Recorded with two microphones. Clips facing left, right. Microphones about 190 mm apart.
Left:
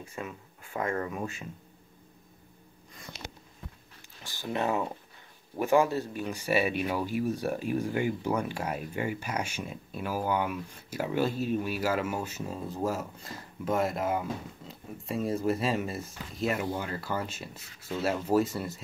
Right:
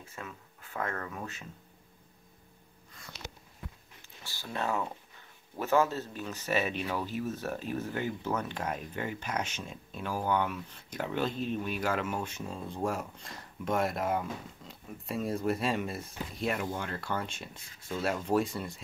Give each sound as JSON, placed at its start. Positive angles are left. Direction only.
{"t": 0.0, "sound": "speech", "side_deg": 15}
{"t": 2.9, "sound": "a sound", "side_deg": 15}
{"t": 4.2, "sound": "speech", "side_deg": 15}